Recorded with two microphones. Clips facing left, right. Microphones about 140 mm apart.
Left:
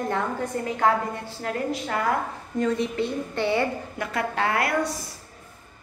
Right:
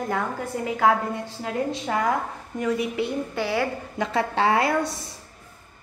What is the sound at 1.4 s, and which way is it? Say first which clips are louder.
A woman's voice: left 1 dB; 15° right (ahead or behind).